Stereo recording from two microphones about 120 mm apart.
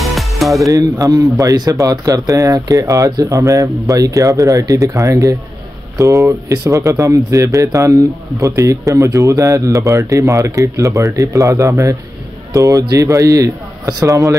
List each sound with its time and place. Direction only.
0.0 s music: centre (ahead or behind)
0.7 s speech: 25° right (ahead or behind)